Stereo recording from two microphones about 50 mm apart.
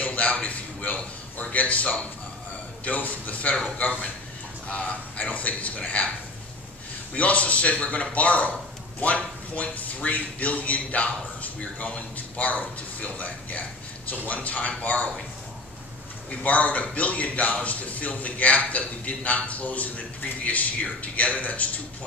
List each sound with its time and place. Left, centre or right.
0.0 s a sound: left
2.8 s a man's voice: left
4.6 s a man's voice: left
7.2 s a man's voice: left
16.3 s a man's voice: left